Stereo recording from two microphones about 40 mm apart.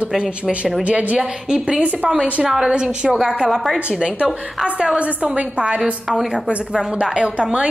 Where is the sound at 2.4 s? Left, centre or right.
Centre.